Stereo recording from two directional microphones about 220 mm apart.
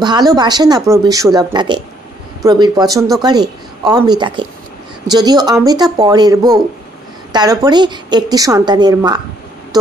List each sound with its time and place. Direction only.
0.0 s speech: 20° right (ahead or behind)